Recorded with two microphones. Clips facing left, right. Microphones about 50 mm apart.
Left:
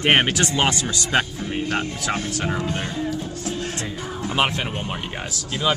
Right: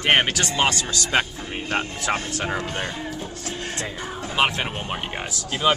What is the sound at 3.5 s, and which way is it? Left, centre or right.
Music, right.